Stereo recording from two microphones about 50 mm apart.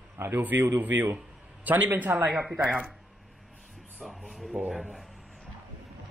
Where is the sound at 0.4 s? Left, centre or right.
Right.